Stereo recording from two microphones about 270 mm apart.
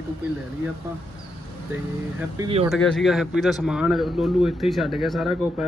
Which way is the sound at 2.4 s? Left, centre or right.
Centre.